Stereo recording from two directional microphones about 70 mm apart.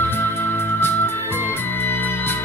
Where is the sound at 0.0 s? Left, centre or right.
Left.